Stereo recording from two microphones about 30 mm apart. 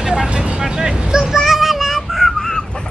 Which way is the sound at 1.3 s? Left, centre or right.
Centre.